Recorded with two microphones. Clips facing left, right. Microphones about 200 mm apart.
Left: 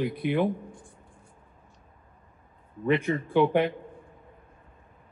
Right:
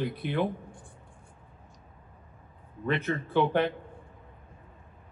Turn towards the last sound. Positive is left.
turn(degrees=15)  # may be behind; listen again after turning